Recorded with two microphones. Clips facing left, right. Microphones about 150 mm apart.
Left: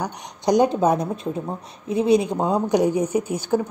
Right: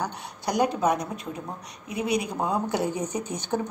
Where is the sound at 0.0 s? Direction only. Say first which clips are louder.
Left 6 dB; 15° left (ahead or behind).